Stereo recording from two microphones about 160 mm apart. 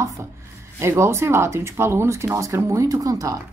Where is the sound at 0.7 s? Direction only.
15° right (ahead or behind).